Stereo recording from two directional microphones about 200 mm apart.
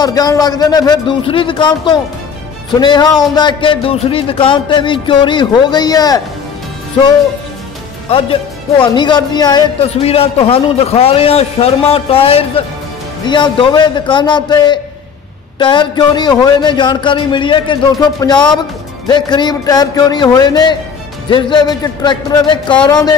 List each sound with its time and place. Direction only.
0.0 s a man's voice: 20° left (ahead or behind)
8.1 s a man's voice: 25° left (ahead or behind)